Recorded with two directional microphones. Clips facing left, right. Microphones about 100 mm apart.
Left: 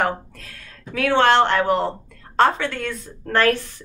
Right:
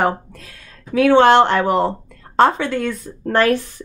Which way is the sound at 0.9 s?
20° right (ahead or behind).